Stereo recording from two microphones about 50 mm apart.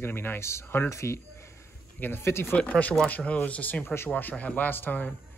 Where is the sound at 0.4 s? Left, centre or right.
Left.